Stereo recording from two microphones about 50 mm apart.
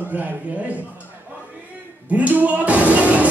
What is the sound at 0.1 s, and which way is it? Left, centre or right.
Speech, right.